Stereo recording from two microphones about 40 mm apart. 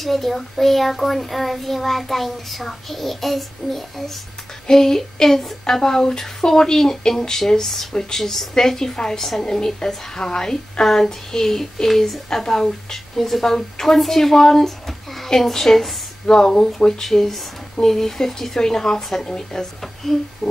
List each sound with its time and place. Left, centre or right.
0.0 s child singing: centre
4.6 s a woman's voice: centre